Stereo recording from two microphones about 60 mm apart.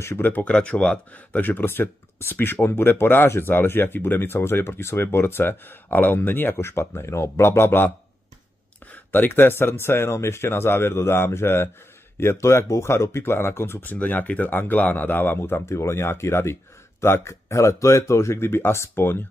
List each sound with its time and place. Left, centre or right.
0.2 s speech: left
0.5 s speech: centre; by 7.9 s left
8.9 s speech: left
13.8 s speech: left
15.6 s speech: left